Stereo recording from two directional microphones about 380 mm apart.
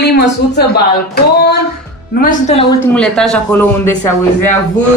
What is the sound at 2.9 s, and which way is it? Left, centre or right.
Speech, centre.